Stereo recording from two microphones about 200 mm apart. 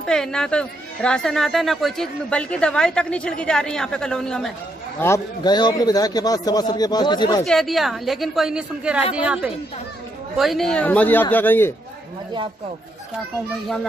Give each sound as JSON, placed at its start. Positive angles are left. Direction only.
{"t": 0.0, "sound": "a woman's voice", "side_deg": 5}
{"t": 5.0, "sound": "a man's voice", "side_deg": 15}
{"t": 7.4, "sound": "a woman's voice", "side_deg": 0}